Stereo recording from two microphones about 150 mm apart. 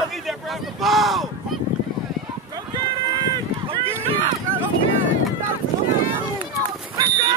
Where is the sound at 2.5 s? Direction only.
30° right (ahead or behind).